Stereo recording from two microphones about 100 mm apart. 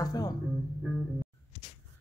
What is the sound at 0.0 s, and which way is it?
Music, 40° left (ahead or behind).